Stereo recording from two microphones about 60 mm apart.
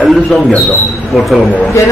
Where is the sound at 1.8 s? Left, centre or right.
Left.